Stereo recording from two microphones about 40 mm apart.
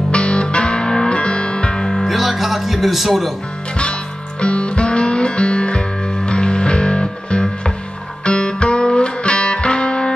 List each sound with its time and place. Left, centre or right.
0.1 s music: left
2.0 s music: centre
4.4 s music: left